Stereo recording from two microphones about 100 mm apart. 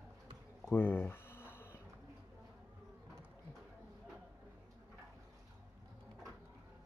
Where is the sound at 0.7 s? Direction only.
15° left (ahead or behind).